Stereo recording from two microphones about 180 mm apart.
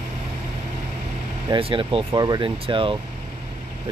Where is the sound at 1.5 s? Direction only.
30° right (ahead or behind).